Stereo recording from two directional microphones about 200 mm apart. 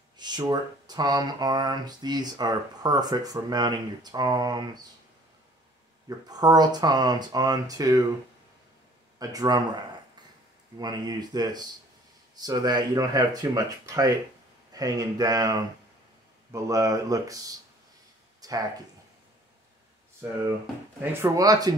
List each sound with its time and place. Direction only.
0.2 s speech: 20° right (ahead or behind)
6.0 s speech: 20° right (ahead or behind)
9.2 s speech: 20° right (ahead or behind)
10.8 s speech: 20° right (ahead or behind)
18.4 s a sound: 20° right (ahead or behind)
20.2 s speech: 10° right (ahead or behind)